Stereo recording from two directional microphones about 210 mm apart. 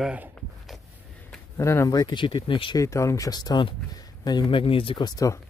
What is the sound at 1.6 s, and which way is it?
Speech, 15° left (ahead or behind).